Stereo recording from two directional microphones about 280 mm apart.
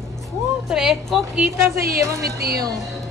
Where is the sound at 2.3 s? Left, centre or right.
Right.